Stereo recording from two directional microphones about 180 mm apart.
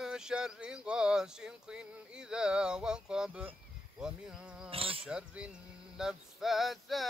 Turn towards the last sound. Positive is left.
turn(degrees=0)  # may be behind; listen again after turning